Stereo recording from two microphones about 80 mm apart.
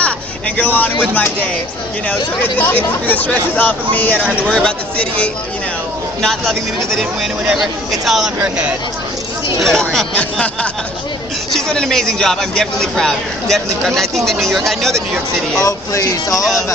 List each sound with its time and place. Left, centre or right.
0.6 s speech: centre
6.2 s speech: centre
9.6 s speech: centre
15.6 s speech: left